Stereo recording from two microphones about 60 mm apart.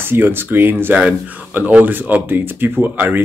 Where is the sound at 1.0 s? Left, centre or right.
Right.